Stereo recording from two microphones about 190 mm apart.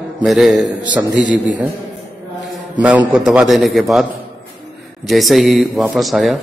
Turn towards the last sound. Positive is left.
turn(degrees=0)  # may be behind; listen again after turning